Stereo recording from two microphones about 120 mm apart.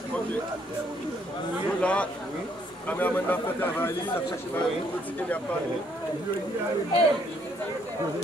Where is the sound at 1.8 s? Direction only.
10° left (ahead or behind).